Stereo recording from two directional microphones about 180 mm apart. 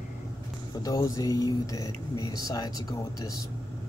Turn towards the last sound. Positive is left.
turn(degrees=20)  # may be behind; listen again after turning